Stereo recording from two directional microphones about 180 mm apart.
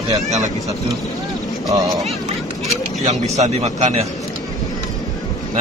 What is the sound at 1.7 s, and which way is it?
Speech, 20° right (ahead or behind).